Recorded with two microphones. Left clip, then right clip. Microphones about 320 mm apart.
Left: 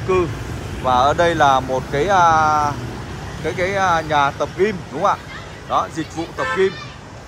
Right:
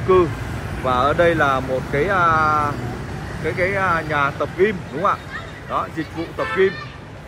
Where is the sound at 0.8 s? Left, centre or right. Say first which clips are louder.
Left 2 dB; centre.